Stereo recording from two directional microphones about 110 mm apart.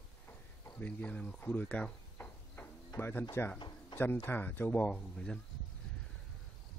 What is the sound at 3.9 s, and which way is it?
Speech, 20° left (ahead or behind).